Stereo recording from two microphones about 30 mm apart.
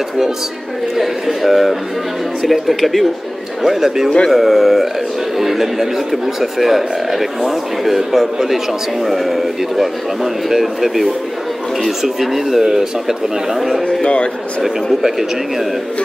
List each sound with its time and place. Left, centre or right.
0.9 s speech: centre
3.6 s speech: centre
13.8 s a man's voice: left
15.0 s speech: centre